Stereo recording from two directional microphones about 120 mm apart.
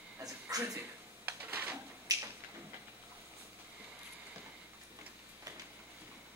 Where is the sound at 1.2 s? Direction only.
15° right (ahead or behind).